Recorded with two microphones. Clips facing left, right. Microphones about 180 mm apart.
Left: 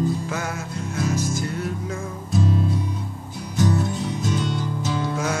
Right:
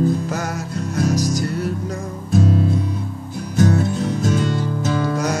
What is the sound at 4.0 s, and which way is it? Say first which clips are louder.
Music: right 5 dB; 50° right (ahead or behind).